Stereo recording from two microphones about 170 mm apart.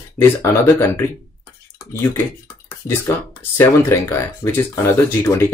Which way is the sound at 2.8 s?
20° left (ahead or behind).